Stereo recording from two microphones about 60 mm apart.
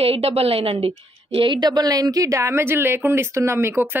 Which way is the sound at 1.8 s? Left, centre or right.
Right.